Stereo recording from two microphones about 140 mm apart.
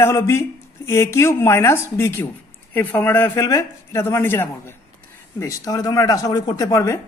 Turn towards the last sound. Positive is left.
turn(degrees=20)  # may be behind; listen again after turning